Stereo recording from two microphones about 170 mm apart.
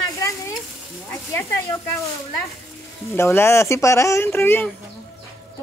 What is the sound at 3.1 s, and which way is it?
Speech, 15° left (ahead or behind).